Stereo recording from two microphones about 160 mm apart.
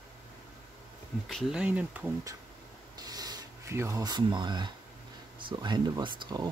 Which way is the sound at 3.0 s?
25° right (ahead or behind).